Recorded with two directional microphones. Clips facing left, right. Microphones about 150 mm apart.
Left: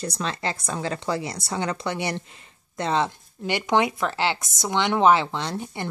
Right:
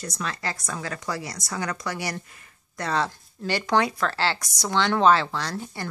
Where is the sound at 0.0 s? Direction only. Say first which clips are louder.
Left 3 dB; 30° left (ahead or behind).